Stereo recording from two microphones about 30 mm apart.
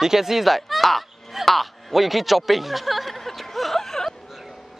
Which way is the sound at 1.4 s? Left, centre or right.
Centre.